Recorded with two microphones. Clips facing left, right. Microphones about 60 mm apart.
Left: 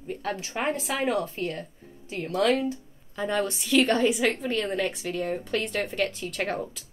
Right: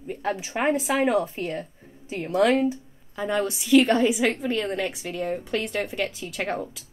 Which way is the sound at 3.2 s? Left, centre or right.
Centre.